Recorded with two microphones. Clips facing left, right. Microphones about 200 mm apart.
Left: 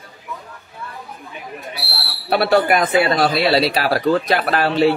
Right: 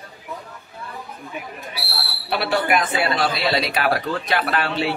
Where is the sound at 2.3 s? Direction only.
45° left (ahead or behind).